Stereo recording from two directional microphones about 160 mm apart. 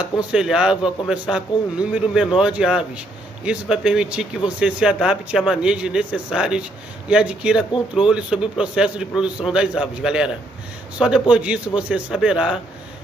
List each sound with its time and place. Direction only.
0.0 s speech: 5° right (ahead or behind)